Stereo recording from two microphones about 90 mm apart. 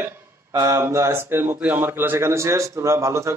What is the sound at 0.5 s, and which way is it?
Speech, 40° right (ahead or behind).